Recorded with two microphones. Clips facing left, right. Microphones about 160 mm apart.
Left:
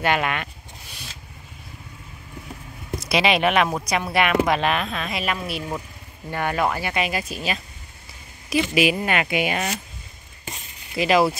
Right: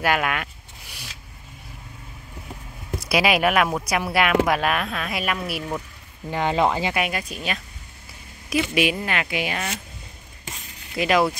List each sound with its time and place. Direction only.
0.0 s speech: 5° right (ahead or behind)
3.1 s speech: 5° right (ahead or behind)
6.3 s speech: 20° right (ahead or behind)
6.9 s speech: centre (ahead or behind)
8.9 s speech: 15° left (ahead or behind)
11.0 s speech: centre (ahead or behind)